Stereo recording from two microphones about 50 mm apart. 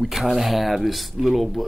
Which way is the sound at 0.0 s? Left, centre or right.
Centre.